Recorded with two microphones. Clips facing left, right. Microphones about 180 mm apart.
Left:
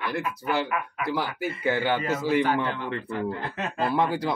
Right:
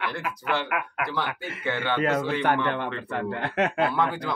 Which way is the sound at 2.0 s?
65° right (ahead or behind).